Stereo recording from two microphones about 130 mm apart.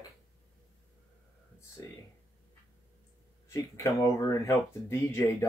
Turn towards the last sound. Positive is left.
turn(degrees=20)  # may be behind; listen again after turning